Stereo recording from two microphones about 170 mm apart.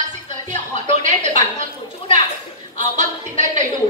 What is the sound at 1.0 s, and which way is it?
Speech, 50° right (ahead or behind).